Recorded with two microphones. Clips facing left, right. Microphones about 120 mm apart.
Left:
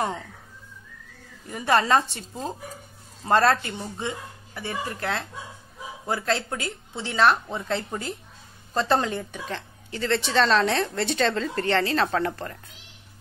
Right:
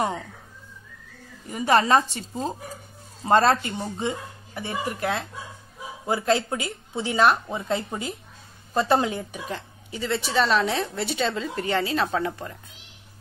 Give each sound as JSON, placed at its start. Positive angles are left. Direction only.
{"t": 1.5, "sound": "speech", "side_deg": -20}
{"t": 3.3, "sound": "speech", "side_deg": -25}